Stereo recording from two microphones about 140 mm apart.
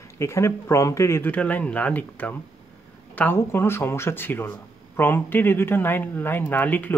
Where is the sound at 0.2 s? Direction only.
20° left (ahead or behind).